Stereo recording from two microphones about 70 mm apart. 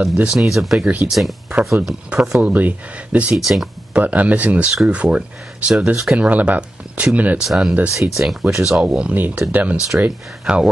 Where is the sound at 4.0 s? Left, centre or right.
Right.